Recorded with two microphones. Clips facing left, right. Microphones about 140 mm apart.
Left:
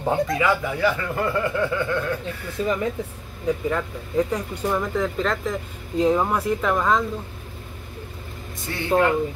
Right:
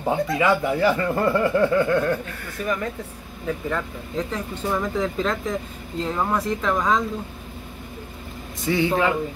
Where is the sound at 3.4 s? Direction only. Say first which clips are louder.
Left 3 dB; 15° left (ahead or behind).